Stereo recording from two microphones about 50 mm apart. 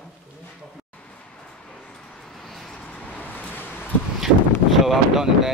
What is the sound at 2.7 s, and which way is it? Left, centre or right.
Vehicle, left.